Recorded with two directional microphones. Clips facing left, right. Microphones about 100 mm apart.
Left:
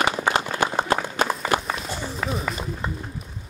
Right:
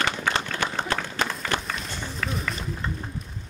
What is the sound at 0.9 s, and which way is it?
Run, 15° left (ahead or behind).